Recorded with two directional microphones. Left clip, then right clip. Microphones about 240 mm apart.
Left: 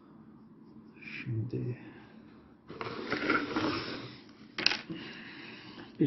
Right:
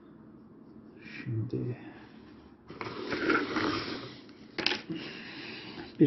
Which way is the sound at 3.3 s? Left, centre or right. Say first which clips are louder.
Right 2 dB; centre.